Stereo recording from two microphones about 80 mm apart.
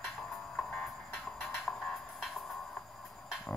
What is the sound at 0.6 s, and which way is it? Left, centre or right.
Music, centre.